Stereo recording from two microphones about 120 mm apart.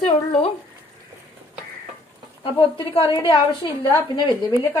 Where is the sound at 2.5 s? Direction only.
50° left (ahead or behind).